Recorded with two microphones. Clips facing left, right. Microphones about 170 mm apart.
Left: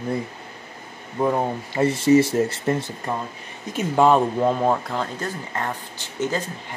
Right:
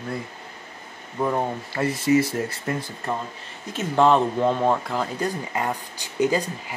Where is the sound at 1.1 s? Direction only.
15° left (ahead or behind).